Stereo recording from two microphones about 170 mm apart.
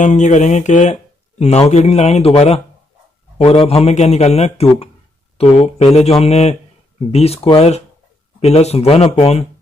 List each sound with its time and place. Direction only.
0.0 s a man's voice: 45° left (ahead or behind)